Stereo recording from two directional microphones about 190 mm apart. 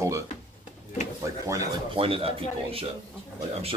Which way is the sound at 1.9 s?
30° right (ahead or behind).